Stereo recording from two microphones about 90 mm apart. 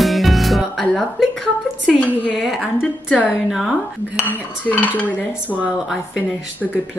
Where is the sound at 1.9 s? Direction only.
5° right (ahead or behind).